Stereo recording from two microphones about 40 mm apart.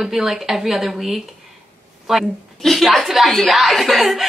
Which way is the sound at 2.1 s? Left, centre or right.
Centre.